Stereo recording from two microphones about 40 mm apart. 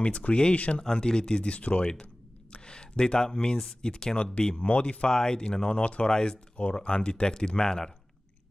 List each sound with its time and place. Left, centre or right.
0.0 s speech: left
1.5 s speech: left
1.8 s speech: centre
2.5 s a sound: left
3.8 s speech: left
6.0 s speech: centre